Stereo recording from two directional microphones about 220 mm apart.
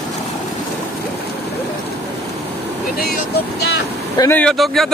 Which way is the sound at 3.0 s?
45° left (ahead or behind).